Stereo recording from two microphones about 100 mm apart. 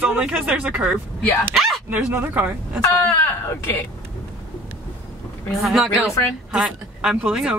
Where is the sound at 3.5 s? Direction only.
20° left (ahead or behind).